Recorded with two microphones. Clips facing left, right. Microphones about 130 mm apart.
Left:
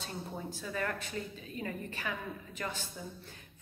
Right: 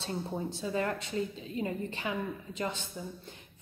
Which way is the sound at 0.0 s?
25° right (ahead or behind).